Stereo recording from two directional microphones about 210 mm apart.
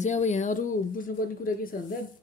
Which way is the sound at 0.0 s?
35° left (ahead or behind).